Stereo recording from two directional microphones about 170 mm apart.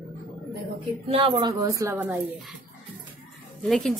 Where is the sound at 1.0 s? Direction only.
35° right (ahead or behind).